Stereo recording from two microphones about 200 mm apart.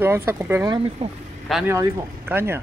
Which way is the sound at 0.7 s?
30° right (ahead or behind).